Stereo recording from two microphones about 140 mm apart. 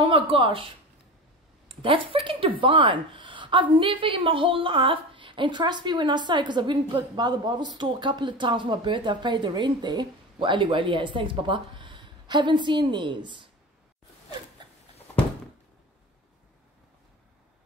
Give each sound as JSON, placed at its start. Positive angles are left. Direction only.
{"t": 0.0, "sound": "speech", "side_deg": -40}